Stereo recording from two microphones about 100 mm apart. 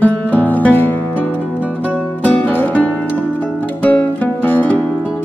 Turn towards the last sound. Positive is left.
turn(degrees=15)  # may be behind; listen again after turning